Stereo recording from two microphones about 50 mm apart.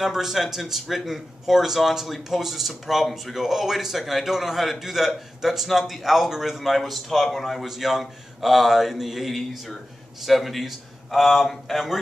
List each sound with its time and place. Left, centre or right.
0.0 s speech: centre